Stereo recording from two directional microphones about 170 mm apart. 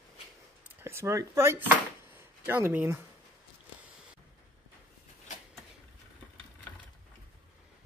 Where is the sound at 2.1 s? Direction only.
15° right (ahead or behind).